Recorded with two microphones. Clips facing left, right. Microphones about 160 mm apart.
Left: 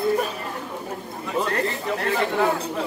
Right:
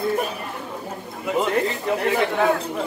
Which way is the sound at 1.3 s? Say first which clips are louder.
Right 3 dB; 15° right (ahead or behind).